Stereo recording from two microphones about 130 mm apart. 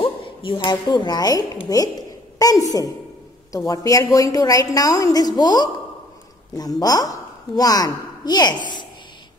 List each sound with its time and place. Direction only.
0.0 s speech: 40° left (ahead or behind)
1.7 s a sound: 25° left (ahead or behind)
3.5 s a woman's voice: 25° left (ahead or behind)
6.8 s a woman's voice: 30° left (ahead or behind)